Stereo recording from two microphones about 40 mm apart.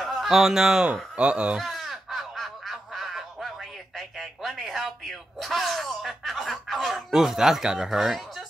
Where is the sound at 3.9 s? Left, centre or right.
Centre.